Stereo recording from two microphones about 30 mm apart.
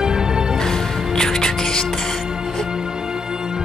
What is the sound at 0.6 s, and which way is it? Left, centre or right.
Music, centre.